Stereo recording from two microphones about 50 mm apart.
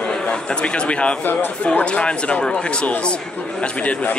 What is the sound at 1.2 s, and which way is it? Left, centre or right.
Speech, left.